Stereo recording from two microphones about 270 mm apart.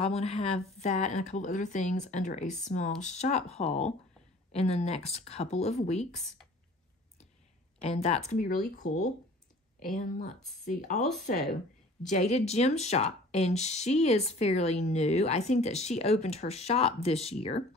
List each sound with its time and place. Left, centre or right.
0.0 s speech: left
7.8 s speech: left
12.1 s speech: left